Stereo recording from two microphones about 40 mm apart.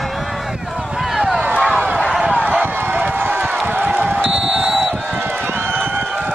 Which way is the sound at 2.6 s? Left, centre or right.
Right.